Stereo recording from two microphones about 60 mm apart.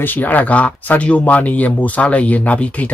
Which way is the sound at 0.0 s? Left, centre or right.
Left.